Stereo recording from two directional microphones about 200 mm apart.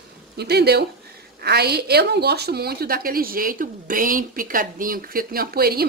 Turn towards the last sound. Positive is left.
turn(degrees=-50)  # may be behind; listen again after turning